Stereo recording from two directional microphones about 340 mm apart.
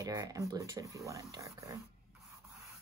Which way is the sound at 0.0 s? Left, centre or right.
Centre.